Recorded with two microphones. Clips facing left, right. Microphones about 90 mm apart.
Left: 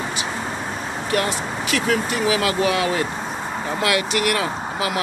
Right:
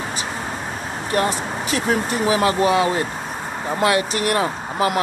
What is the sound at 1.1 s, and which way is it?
Speech, 35° right (ahead or behind).